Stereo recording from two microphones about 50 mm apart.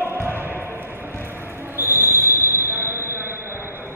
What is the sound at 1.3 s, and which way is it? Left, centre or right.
Fire alarm, right.